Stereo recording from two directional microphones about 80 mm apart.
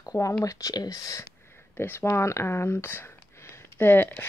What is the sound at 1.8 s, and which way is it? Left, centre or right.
Speech, left.